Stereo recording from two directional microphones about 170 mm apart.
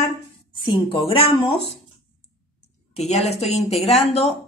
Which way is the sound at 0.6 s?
30° left (ahead or behind).